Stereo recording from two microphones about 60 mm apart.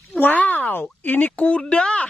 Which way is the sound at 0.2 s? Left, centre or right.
Left.